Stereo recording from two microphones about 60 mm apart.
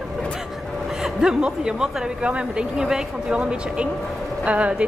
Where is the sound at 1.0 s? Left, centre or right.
Centre.